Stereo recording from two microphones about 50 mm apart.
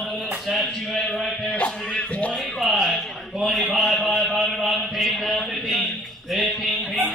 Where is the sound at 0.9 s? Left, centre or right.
Centre.